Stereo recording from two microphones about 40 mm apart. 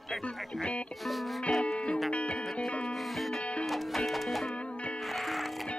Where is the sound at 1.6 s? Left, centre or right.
Left.